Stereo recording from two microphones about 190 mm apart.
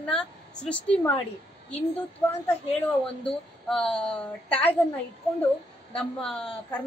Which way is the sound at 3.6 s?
5° left (ahead or behind).